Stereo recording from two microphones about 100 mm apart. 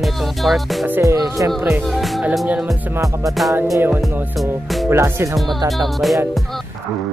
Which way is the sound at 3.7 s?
20° right (ahead or behind).